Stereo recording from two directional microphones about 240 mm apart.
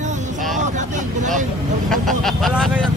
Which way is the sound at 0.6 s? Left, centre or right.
Right.